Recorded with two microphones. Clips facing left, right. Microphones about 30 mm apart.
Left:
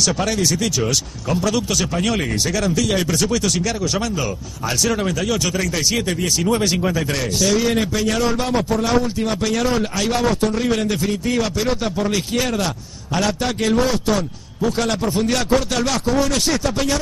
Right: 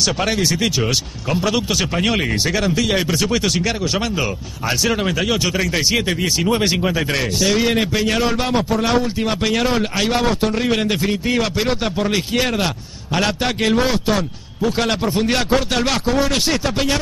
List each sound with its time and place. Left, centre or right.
0.0 s speech: right
7.0 s a man's voice: right